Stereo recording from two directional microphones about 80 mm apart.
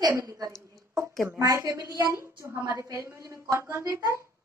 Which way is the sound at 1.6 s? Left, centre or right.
Right.